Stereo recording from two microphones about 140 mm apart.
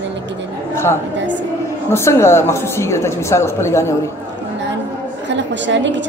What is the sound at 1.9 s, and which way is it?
A man's voice, 20° left (ahead or behind).